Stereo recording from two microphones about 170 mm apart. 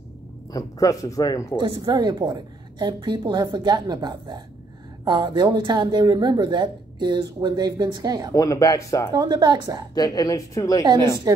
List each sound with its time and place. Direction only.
0.5 s speech: 20° left (ahead or behind)
1.6 s a woman's voice: 25° right (ahead or behind)
8.4 s speech: 20° left (ahead or behind)
9.1 s a woman's voice: 25° right (ahead or behind)
9.9 s speech: 25° left (ahead or behind)
11.3 s a woman's voice: 20° right (ahead or behind)